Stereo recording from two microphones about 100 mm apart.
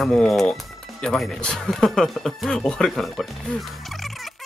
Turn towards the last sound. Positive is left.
turn(degrees=0)  # may be behind; listen again after turning